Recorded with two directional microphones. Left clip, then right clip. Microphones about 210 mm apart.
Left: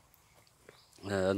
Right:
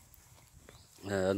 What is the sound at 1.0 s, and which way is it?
Speech, 5° left (ahead or behind).